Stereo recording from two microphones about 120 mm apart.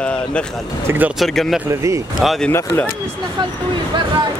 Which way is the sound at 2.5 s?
20° left (ahead or behind).